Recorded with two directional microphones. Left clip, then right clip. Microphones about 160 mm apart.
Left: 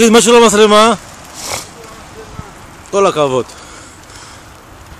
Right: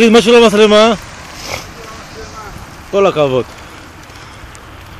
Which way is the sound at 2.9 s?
15° left (ahead or behind).